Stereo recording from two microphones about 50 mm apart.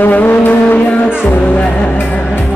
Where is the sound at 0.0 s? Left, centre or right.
Left.